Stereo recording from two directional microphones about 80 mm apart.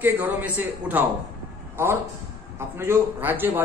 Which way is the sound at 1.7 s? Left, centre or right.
Right.